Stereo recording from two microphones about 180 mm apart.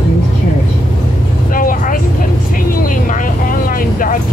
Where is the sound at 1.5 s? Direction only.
50° left (ahead or behind).